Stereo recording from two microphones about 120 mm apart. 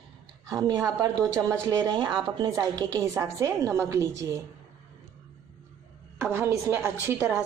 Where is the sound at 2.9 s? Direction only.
25° right (ahead or behind).